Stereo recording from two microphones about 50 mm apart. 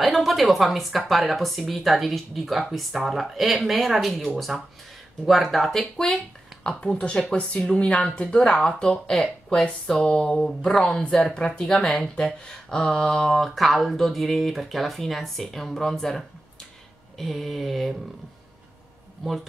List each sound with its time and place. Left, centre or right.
0.0 s speech: centre
8.5 s speech: centre
8.7 s speech: centre
11.6 s speech: centre
13.3 s speech: centre